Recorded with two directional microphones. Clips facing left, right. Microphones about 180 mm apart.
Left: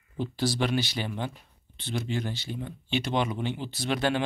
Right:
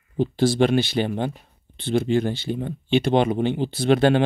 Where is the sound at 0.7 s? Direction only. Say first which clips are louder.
Right 8 dB; 55° right (ahead or behind).